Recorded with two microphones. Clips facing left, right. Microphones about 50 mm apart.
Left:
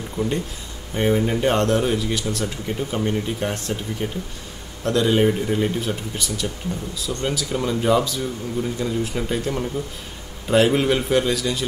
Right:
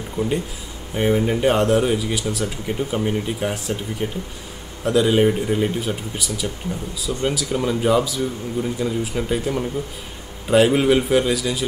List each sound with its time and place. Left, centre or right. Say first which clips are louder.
0.2 s speech: right 1 dB; right
0.9 s speech: right 1 dB; centre